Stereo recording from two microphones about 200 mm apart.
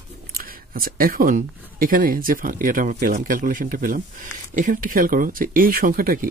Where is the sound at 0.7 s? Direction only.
45° right (ahead or behind).